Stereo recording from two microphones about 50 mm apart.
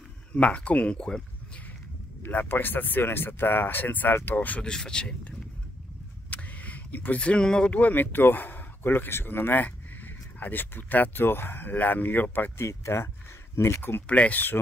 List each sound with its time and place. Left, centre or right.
0.3 s speech: left
2.2 s speech: left
4.6 s speech: centre
6.3 s a sound: left
7.2 s speech: centre
7.7 s speech: left
9.6 s speech: left
12.5 s speech: left
13.6 s speech: left
14.0 s speech: left